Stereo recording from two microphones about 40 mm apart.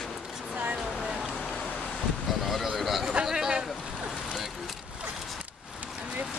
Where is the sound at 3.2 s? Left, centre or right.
Centre.